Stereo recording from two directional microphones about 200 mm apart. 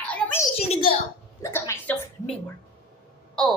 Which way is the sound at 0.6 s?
30° left (ahead or behind).